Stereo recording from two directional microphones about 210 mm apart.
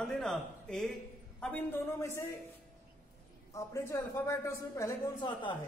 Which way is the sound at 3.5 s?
15° left (ahead or behind).